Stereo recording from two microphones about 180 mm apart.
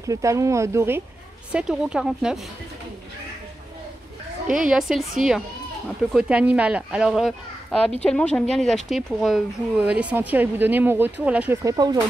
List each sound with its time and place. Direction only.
0.0 s speech: 15° right (ahead or behind)
4.5 s speech: 5° right (ahead or behind)
6.1 s speech: 5° right (ahead or behind); by 12.0 s 20° right (ahead or behind)